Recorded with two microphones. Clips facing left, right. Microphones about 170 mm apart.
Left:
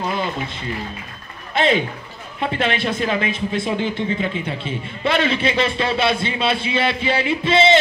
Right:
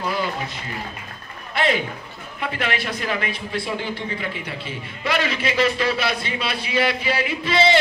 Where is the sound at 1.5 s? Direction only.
25° left (ahead or behind).